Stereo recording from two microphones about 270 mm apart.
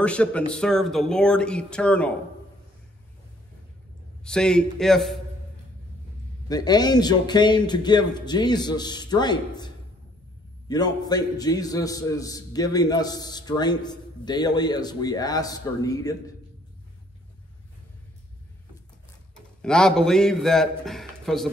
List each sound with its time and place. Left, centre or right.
0.0 s speech: centre
4.2 s speech: centre
6.5 s a man's voice: centre
10.7 s a man's voice: centre
19.6 s speech: centre